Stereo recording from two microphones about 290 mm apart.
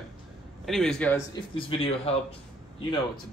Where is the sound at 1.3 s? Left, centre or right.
Centre.